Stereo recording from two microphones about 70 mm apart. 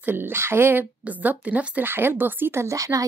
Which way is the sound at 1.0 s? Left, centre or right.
Right.